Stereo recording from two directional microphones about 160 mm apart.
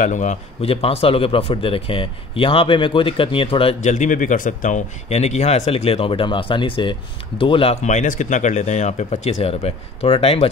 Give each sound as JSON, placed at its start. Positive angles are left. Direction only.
{"t": 0.0, "sound": "speech", "side_deg": 50}
{"t": 3.8, "sound": "speech", "side_deg": 50}